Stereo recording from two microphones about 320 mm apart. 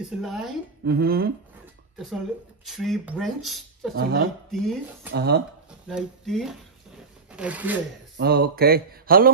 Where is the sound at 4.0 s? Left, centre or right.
Right.